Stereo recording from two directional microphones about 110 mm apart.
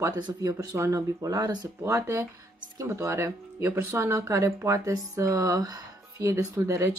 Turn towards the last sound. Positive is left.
turn(degrees=-25)  # may be behind; listen again after turning